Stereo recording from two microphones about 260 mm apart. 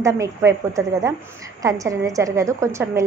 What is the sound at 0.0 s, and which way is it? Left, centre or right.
A woman's voice, centre.